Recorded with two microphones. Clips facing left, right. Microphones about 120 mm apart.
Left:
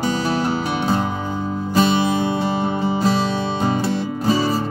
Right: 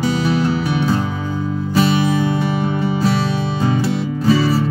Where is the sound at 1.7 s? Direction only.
25° left (ahead or behind).